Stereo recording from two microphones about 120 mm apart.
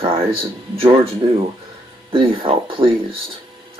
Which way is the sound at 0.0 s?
50° right (ahead or behind).